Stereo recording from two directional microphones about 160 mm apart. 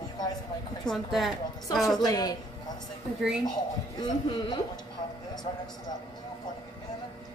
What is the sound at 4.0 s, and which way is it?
Speech, 25° left (ahead or behind).